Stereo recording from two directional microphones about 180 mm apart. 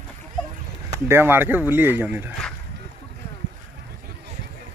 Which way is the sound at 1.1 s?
10° right (ahead or behind).